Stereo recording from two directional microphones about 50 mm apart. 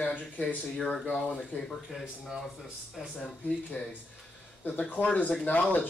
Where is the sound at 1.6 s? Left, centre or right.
Centre.